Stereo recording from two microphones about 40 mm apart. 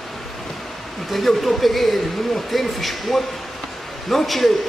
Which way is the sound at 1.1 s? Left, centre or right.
Centre.